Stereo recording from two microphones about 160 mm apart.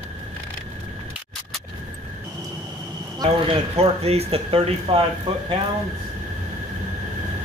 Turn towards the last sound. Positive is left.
turn(degrees=-35)  # may be behind; listen again after turning